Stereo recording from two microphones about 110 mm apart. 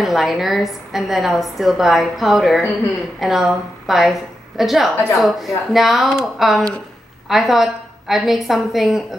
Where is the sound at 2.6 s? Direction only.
25° left (ahead or behind).